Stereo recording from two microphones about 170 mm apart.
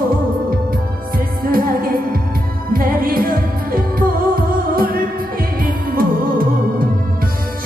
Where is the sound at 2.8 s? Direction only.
55° right (ahead or behind).